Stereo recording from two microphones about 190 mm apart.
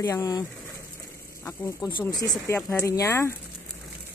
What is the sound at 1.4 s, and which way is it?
Speech, 15° left (ahead or behind).